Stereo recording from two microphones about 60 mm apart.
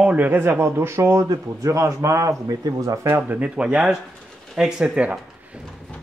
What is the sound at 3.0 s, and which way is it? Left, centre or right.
Speech, right.